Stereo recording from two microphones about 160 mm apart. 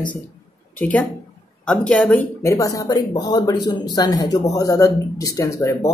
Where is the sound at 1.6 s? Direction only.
5° left (ahead or behind).